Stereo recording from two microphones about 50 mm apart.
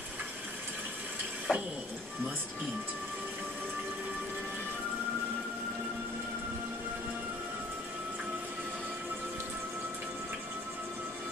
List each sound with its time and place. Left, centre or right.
1.5 s speech: centre